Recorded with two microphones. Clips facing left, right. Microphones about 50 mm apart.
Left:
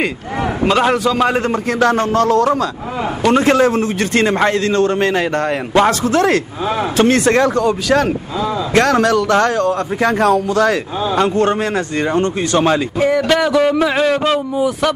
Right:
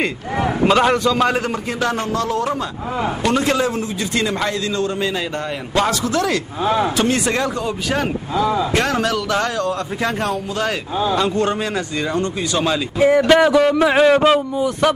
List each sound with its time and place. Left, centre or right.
0.7 s a man's voice: centre
1.8 s a man's voice: left
3.3 s a man's voice: left
3.5 s a man's voice: left
5.8 s speech: left
7.0 s a man's voice: left
10.1 s speech: left
11.1 s speech: left
13.0 s speech: centre
13.6 s speech: centre
13.8 s speech: centre